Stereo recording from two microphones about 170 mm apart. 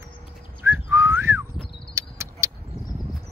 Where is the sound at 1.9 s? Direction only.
15° right (ahead or behind).